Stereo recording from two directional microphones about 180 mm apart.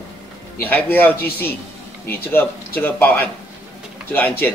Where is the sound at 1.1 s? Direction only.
60° left (ahead or behind).